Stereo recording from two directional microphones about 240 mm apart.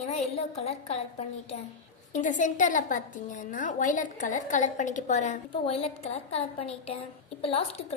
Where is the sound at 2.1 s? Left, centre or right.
Left.